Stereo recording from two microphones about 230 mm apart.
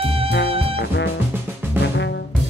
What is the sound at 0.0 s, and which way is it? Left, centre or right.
Music, right.